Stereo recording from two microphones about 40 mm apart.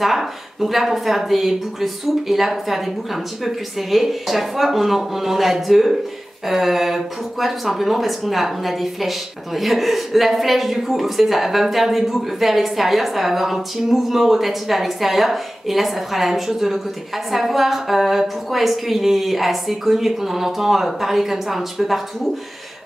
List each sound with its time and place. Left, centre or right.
0.0 s speech: centre